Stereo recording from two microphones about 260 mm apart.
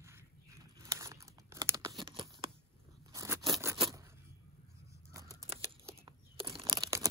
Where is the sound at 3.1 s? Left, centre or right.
Centre.